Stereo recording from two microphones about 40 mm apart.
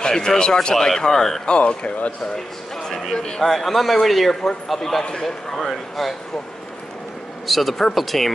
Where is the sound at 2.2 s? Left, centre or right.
Centre.